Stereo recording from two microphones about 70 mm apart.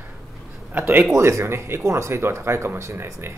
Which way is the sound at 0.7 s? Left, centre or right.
Right.